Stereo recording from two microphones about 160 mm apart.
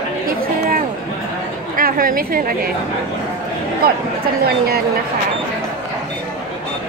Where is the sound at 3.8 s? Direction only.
70° right (ahead or behind).